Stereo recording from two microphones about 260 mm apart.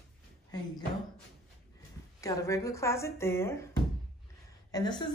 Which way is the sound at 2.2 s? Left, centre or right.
Centre.